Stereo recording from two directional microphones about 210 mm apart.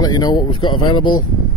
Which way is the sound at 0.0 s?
20° left (ahead or behind).